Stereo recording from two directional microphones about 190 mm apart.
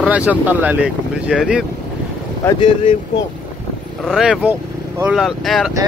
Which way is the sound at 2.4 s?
25° left (ahead or behind).